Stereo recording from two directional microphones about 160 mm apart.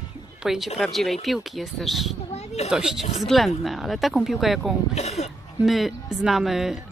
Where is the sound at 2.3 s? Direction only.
40° left (ahead or behind).